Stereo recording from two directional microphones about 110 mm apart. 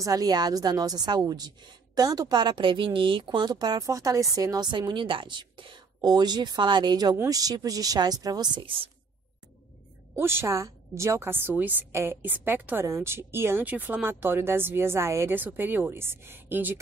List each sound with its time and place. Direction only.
0.0 s a woman's voice: 35° right (ahead or behind); by 8.9 s 50° right (ahead or behind)
10.1 s a woman's voice: 20° right (ahead or behind)